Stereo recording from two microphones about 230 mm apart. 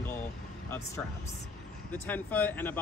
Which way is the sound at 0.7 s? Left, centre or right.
Centre.